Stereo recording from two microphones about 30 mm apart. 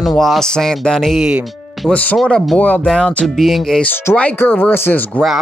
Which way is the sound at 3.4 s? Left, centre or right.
Centre.